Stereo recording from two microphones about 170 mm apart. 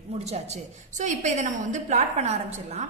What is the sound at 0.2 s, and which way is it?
A woman's voice, 40° right (ahead or behind).